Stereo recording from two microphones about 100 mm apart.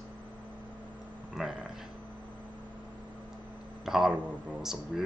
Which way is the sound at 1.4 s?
5° right (ahead or behind).